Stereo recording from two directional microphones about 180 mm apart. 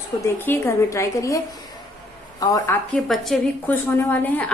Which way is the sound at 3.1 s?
Centre (ahead or behind).